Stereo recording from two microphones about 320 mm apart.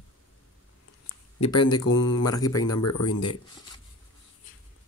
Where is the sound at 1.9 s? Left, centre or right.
Left.